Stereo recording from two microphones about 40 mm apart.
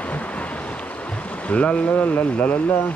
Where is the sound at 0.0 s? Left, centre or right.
Left.